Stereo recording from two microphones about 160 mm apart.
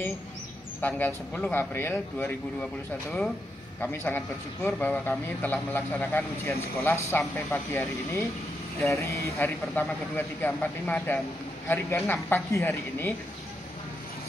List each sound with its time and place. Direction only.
0.7 s a man's voice: 10° left (ahead or behind)
3.8 s a man's voice: 15° left (ahead or behind)